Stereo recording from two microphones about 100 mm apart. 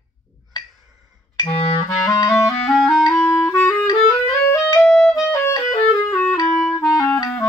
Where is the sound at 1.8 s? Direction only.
35° left (ahead or behind).